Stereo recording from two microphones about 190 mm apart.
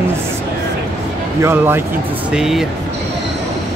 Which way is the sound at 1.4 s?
10° right (ahead or behind).